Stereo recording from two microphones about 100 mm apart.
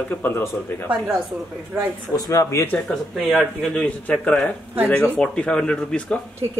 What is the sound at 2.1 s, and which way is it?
Speech, 35° left (ahead or behind).